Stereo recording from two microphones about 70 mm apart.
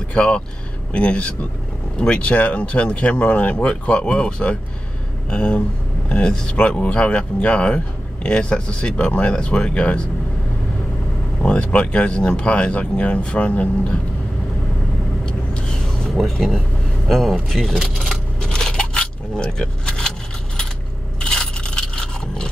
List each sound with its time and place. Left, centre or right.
0.1 s speech: centre
11.4 s speech: centre
15.2 s vehicle: centre
17.1 s speech: centre
18.5 s scrape: centre
21.2 s coin: centre